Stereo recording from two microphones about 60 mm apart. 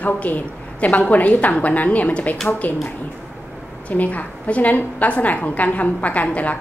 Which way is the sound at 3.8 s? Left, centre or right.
Left.